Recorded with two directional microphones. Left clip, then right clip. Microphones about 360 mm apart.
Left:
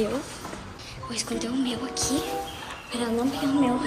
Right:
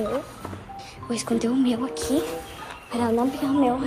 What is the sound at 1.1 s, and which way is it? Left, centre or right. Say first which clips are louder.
A woman's voice: right 5 dB; centre.